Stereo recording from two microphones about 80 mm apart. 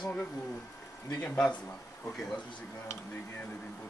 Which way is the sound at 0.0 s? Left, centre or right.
Centre.